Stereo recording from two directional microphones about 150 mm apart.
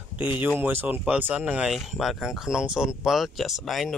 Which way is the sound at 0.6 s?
15° right (ahead or behind).